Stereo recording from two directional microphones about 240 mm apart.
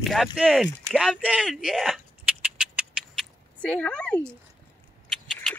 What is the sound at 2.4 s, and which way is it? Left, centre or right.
Cat, centre.